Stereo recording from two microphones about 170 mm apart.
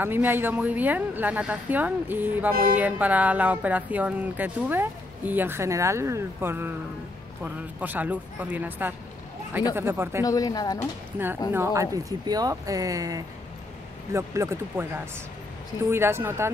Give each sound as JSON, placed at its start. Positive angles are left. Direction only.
{"t": 0.0, "sound": "speech", "side_deg": -10}
{"t": 10.2, "sound": "speech", "side_deg": 20}
{"t": 11.5, "sound": "speech", "side_deg": -15}
{"t": 15.9, "sound": "speech", "side_deg": -15}